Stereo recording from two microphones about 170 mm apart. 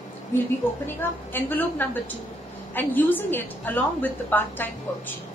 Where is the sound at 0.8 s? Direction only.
10° left (ahead or behind).